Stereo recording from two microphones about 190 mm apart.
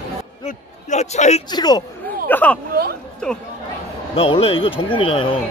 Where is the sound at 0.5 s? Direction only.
40° left (ahead or behind).